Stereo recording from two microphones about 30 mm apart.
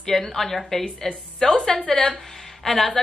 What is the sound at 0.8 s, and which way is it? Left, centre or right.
A woman's voice, centre.